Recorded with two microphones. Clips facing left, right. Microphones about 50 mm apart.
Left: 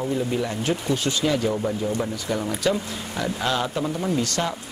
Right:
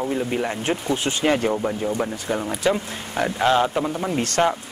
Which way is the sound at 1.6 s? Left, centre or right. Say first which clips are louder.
Right 1 dB; right.